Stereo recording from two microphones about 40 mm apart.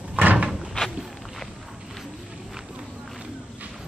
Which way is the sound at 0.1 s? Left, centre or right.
Right.